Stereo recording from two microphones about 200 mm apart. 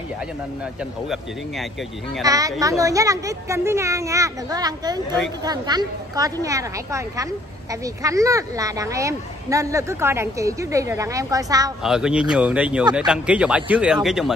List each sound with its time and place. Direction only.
1.0 s speech: centre (ahead or behind)
2.2 s speech: 15° right (ahead or behind)
11.8 s speech: 5° right (ahead or behind)